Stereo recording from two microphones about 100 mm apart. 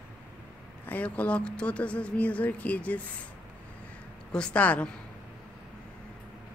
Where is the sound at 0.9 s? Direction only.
15° left (ahead or behind).